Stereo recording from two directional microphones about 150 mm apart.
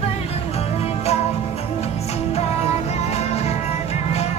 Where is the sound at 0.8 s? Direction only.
45° left (ahead or behind).